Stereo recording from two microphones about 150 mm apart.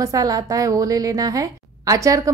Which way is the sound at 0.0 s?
25° right (ahead or behind).